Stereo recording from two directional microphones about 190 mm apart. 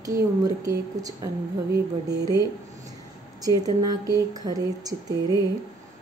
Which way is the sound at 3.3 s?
20° right (ahead or behind).